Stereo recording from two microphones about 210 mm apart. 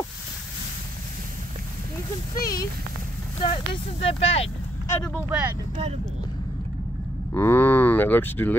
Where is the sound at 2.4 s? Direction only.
15° left (ahead or behind).